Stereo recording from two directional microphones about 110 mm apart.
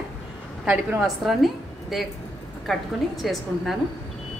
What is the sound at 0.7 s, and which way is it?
Speech, centre (ahead or behind).